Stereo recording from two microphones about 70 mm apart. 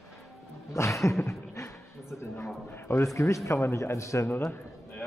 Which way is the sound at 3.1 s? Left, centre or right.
Left.